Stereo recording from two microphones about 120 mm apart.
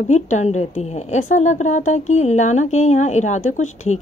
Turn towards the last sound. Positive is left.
turn(degrees=75)  # may be behind; listen again after turning